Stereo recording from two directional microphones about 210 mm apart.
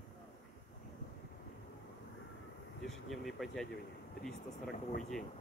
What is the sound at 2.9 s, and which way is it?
Speech, centre (ahead or behind).